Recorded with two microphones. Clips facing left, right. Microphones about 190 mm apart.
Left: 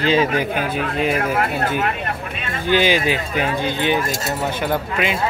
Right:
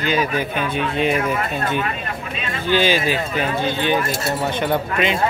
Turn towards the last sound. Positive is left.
turn(degrees=10)  # may be behind; listen again after turning